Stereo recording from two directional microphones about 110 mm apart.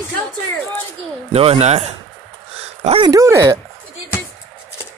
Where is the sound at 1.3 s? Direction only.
70° right (ahead or behind).